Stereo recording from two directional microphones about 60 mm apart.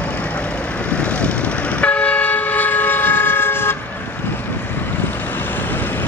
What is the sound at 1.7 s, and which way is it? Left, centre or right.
Train, left.